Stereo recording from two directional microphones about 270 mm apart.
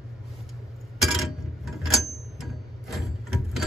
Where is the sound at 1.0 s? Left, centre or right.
Centre.